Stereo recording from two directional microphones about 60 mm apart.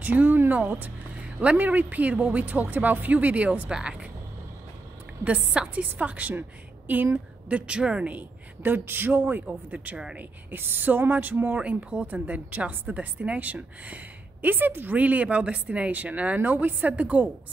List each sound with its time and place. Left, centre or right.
0.0 s speech: right
5.2 s speech: right
9.1 s speech: right
10.1 s speech: right